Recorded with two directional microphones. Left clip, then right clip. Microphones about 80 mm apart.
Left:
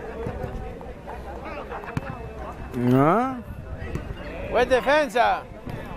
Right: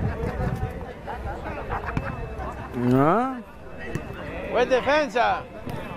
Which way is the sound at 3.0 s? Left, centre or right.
Centre.